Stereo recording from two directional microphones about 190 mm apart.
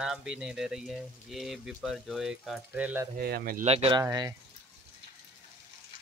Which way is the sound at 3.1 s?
50° right (ahead or behind).